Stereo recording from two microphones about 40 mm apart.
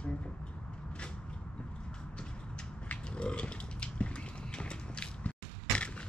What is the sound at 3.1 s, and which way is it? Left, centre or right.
Pig, left.